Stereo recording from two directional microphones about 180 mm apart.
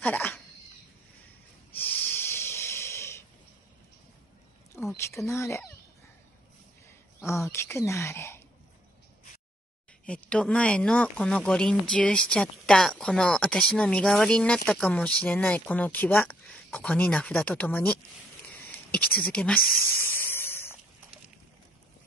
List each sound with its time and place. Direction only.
0.0 s speech: 10° left (ahead or behind)
1.8 s snort: 10° left (ahead or behind)
4.9 s speech: 15° left (ahead or behind)
7.2 s speech: 15° left (ahead or behind)
10.0 s speech: 5° left (ahead or behind)
18.6 s a sound: 10° left (ahead or behind)